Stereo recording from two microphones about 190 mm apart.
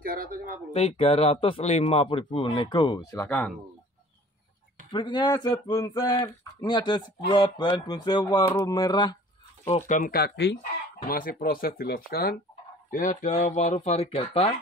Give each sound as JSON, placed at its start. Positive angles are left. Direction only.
{"t": 0.0, "sound": "speech", "side_deg": -50}
{"t": 0.7, "sound": "speech", "side_deg": 30}
{"t": 3.3, "sound": "speech", "side_deg": 5}
{"t": 4.9, "sound": "speech", "side_deg": 25}
{"t": 9.7, "sound": "speech", "side_deg": 40}
{"t": 11.1, "sound": "speech", "side_deg": 50}
{"t": 12.9, "sound": "speech", "side_deg": 45}